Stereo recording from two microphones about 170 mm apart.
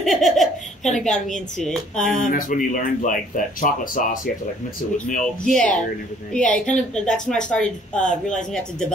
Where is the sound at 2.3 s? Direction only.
50° left (ahead or behind).